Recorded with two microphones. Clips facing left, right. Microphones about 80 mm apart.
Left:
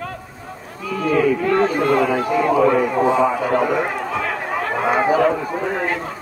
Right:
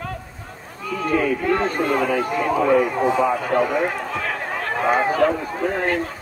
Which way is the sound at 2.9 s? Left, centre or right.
Centre.